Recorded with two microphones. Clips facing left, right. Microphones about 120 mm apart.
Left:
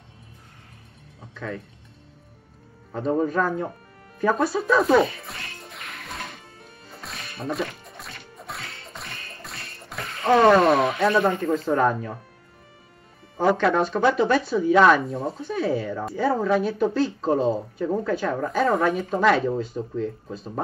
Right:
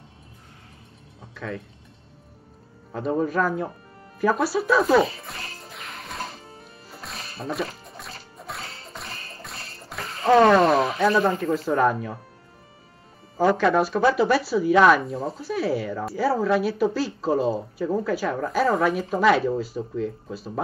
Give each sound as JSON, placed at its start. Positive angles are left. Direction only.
{"t": 1.3, "sound": "speech", "side_deg": 0}
{"t": 2.9, "sound": "speech", "side_deg": 0}
{"t": 5.6, "sound": "music", "side_deg": 0}
{"t": 6.1, "sound": "music", "side_deg": -35}
{"t": 6.9, "sound": "music", "side_deg": 0}
{"t": 7.2, "sound": "music", "side_deg": -35}
{"t": 8.4, "sound": "music", "side_deg": 0}
{"t": 8.6, "sound": "whip", "side_deg": -35}
{"t": 9.6, "sound": "water", "side_deg": -30}
{"t": 9.8, "sound": "speech", "side_deg": 0}
{"t": 13.6, "sound": "speech", "side_deg": -5}